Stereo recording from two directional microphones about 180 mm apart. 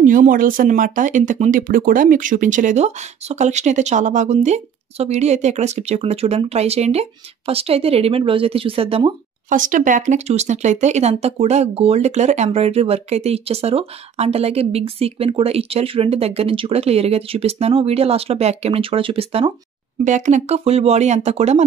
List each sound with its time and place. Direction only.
0.0 s speech: 45° right (ahead or behind); by 9.1 s 30° right (ahead or behind)
9.5 s speech: 45° right (ahead or behind); by 19.5 s 30° right (ahead or behind)
20.1 s speech: 40° right (ahead or behind)